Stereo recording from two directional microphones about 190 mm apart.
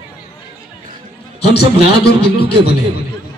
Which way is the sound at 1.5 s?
60° left (ahead or behind).